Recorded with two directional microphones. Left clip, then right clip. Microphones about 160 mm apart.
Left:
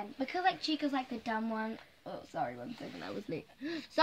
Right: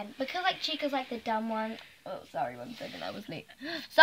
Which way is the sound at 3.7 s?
65° right (ahead or behind).